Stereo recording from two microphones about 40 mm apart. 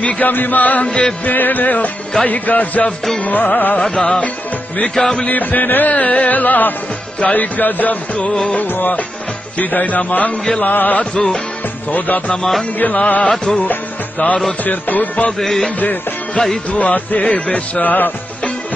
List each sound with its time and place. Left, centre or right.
0.2 s music: left
0.8 s music: left
1.2 s music: left
3.8 s music: centre
5.3 s music: left
8.6 s music: left
9.6 s music: left
11.0 s music: centre
12.7 s music: left
13.0 s music: left
16.4 s music: left
16.7 s music: left
17.8 s music: left